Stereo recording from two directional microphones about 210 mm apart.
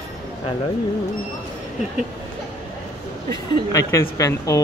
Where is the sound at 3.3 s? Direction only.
15° left (ahead or behind).